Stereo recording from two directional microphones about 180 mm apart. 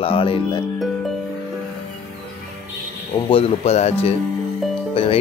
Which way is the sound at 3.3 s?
35° left (ahead or behind).